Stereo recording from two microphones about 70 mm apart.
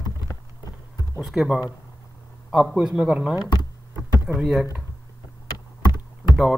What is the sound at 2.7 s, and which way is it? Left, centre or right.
Speech, centre.